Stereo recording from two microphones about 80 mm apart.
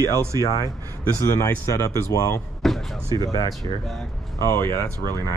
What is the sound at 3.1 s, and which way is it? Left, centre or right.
Speech, left.